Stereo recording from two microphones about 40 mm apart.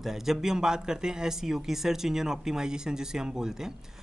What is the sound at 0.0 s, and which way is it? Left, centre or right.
Speech, centre.